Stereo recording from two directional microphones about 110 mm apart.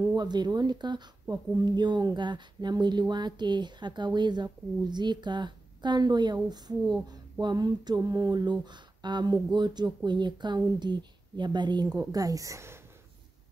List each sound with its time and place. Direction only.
0.1 s speech: 40° right (ahead or behind)